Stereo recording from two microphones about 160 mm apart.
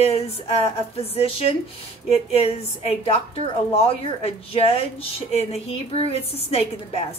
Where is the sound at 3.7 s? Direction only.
40° left (ahead or behind).